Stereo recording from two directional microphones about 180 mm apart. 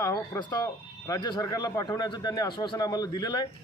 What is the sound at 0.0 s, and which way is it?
Speech, 15° left (ahead or behind).